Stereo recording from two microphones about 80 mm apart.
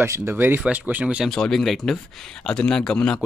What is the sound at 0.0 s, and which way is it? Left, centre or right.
Speech, right.